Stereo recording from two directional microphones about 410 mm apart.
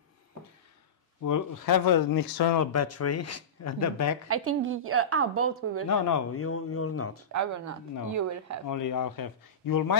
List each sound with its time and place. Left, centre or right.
1.2 s speech: left
2.6 s speech: left
4.3 s a woman's voice: right
5.9 s speech: left
6.3 s speech: left
7.3 s a woman's voice: right
8.6 s speech: left